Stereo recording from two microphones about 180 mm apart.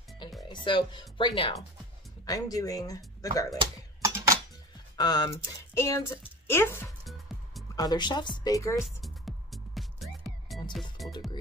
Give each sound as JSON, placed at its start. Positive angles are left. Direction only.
{"t": 0.4, "sound": "a woman's voice", "side_deg": 25}
{"t": 3.5, "sound": "a sound", "side_deg": -15}
{"t": 4.9, "sound": "a woman's voice", "side_deg": 20}
{"t": 8.8, "sound": "music", "side_deg": 0}